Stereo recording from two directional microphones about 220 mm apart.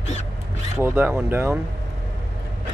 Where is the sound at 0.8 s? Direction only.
10° right (ahead or behind).